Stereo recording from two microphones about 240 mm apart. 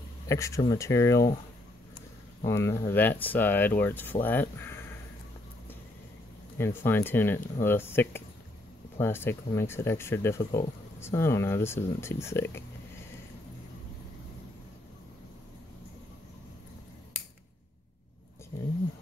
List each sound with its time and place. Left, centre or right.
0.3 s speech: centre
2.4 s speech: centre
6.6 s speech: centre
18.5 s a sound: centre